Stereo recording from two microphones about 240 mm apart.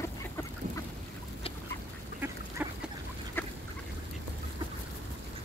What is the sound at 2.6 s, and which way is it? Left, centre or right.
Duck, centre.